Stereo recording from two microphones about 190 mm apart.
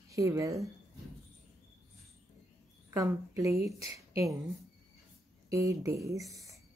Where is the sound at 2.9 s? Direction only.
15° right (ahead or behind).